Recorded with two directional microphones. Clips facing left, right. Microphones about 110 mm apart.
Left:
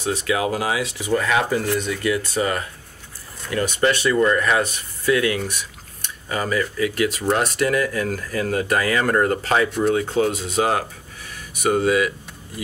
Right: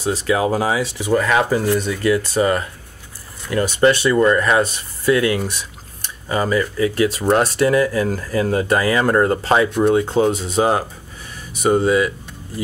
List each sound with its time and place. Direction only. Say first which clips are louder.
0.0 s speech: right 4 dB; 35° right (ahead or behind)